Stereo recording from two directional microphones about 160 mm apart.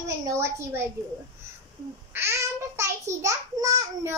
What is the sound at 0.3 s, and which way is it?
Speech, 15° right (ahead or behind).